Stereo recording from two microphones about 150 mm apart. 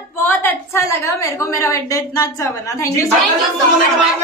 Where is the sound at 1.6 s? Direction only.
20° left (ahead or behind).